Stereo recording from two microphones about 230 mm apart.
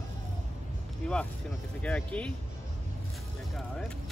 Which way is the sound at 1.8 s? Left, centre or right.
Centre.